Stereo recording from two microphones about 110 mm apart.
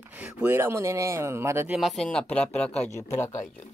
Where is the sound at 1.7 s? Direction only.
Centre (ahead or behind).